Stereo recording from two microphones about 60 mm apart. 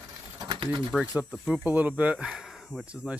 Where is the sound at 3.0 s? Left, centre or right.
Centre.